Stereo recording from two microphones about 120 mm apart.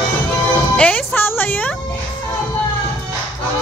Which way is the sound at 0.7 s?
15° left (ahead or behind).